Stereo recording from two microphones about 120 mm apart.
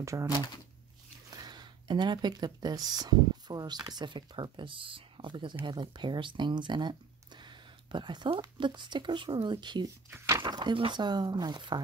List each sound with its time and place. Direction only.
0.0 s speech: 25° right (ahead or behind)
1.3 s speech: 35° right (ahead or behind)
10.1 s a sound: 20° right (ahead or behind)
10.4 s speech: 40° right (ahead or behind)